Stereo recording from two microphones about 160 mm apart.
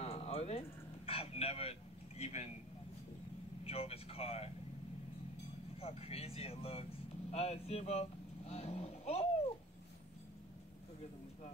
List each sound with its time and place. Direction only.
0.0 s a sound: 40° left (ahead or behind)
3.6 s speech: 40° left (ahead or behind)
5.8 s speech: 40° left (ahead or behind)